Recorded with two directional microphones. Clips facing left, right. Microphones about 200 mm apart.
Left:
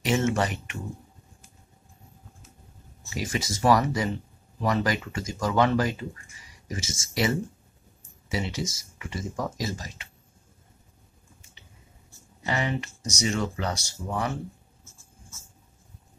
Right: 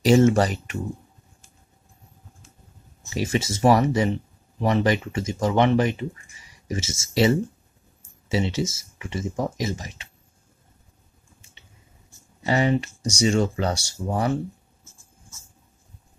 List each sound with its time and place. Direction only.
0.0 s speech: 35° right (ahead or behind)
3.0 s speech: 25° right (ahead or behind)
12.4 s speech: 30° right (ahead or behind)